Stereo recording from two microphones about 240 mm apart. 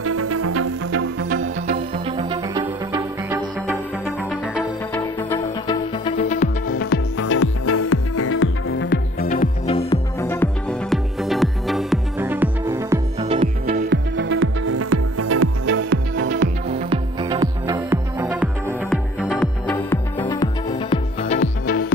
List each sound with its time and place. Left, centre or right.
0.0 s music: right
1.7 s music: right
2.6 s music: centre
4.6 s music: centre
5.7 s music: left
7.2 s music: left
9.3 s music: left
10.2 s music: centre
13.2 s music: right
13.7 s music: right
16.9 s music: centre
19.7 s music: centre
20.9 s music: left